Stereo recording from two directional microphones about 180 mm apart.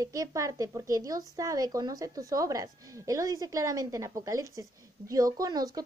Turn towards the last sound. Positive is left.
turn(degrees=-20)  # may be behind; listen again after turning